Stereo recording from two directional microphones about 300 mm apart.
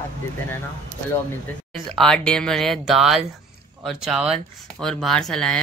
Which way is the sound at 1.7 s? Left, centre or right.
Centre.